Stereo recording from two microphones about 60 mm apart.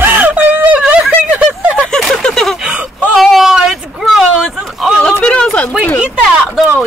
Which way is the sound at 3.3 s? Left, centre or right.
Centre.